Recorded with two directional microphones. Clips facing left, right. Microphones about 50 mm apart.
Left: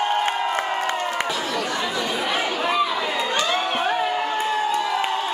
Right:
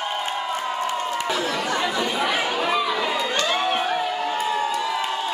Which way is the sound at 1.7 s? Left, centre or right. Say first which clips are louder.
Right 1 dB; centre.